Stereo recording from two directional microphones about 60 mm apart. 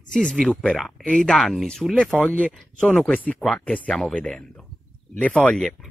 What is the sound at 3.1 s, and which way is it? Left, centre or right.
Speech, left.